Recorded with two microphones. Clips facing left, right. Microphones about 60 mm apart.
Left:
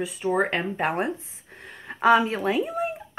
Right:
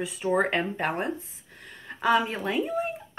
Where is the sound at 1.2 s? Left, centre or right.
Left.